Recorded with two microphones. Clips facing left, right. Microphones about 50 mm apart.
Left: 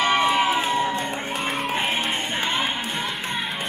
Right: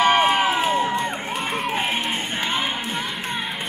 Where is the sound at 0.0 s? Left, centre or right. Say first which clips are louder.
Right 3 dB; right.